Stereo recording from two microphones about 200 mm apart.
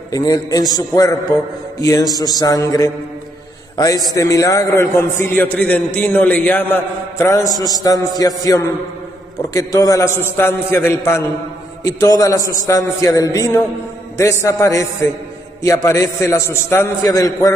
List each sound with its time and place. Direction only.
0.1 s a man's voice: 20° left (ahead or behind)